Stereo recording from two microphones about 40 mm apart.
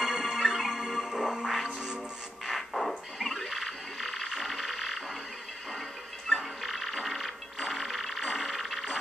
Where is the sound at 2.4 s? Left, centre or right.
Centre.